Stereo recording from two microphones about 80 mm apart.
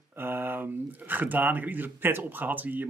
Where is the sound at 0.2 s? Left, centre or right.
Right.